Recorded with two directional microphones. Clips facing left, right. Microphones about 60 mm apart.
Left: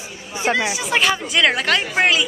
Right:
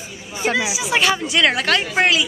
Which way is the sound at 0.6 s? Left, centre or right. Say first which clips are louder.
Right 2 dB; centre.